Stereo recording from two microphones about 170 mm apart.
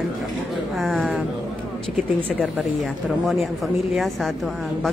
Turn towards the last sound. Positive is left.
turn(degrees=0)  # may be behind; listen again after turning